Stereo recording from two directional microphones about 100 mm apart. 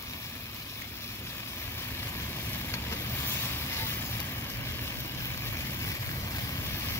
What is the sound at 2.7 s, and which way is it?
Vehicle, 25° left (ahead or behind).